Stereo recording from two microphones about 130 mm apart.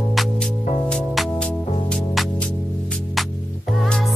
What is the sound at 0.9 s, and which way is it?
Music, 5° left (ahead or behind).